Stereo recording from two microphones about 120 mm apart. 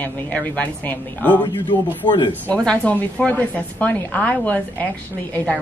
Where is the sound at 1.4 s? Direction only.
40° left (ahead or behind).